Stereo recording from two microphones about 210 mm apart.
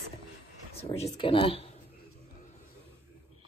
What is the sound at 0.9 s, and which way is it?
Speech, 25° left (ahead or behind).